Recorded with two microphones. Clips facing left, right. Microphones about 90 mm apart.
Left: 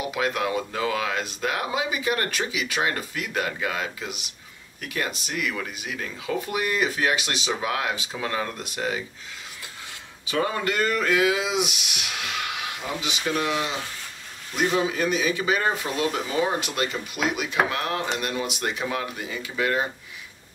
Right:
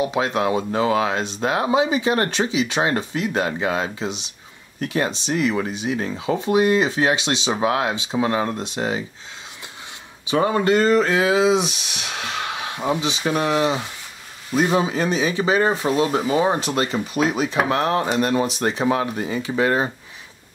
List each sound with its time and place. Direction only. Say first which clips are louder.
0.0 s speech: right 5 dB; 25° right (ahead or behind)
10.2 s speech: right 7 dB; 25° right (ahead or behind)